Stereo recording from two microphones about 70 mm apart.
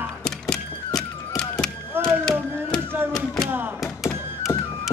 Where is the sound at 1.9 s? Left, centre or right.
Right.